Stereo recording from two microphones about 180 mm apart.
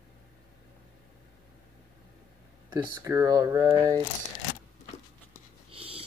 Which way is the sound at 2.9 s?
15° right (ahead or behind).